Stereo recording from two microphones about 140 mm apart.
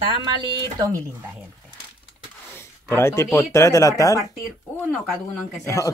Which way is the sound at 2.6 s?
20° left (ahead or behind).